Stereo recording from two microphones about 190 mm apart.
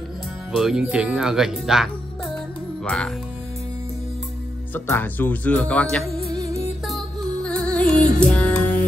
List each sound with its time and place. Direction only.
0.6 s speech: 5° right (ahead or behind)
4.7 s speech: 10° left (ahead or behind)
6.1 s music: 20° right (ahead or behind)
6.9 s music: 5° left (ahead or behind)